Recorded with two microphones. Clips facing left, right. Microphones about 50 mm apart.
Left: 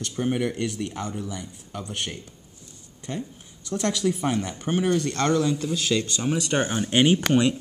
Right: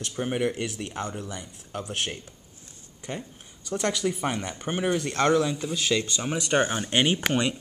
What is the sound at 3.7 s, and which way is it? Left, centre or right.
Speech, centre.